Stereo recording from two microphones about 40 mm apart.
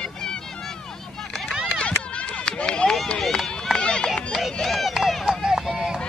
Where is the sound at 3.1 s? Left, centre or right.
Centre.